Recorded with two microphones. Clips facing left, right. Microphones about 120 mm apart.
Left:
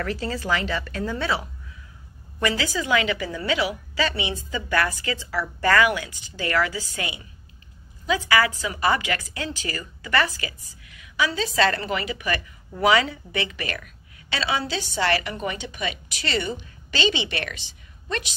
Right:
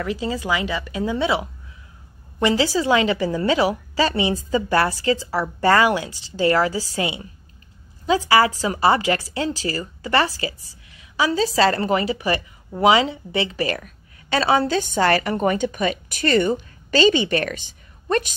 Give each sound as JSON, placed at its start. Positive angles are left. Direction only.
{"t": 0.0, "sound": "a woman's voice", "side_deg": -15}
{"t": 2.4, "sound": "a woman's voice", "side_deg": -30}